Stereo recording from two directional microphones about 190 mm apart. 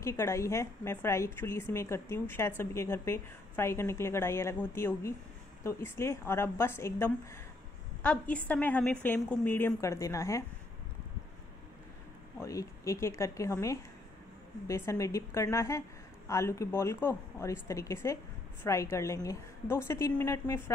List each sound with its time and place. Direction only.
0.0 s a woman's voice: 15° left (ahead or behind)
12.4 s a woman's voice: 15° left (ahead or behind)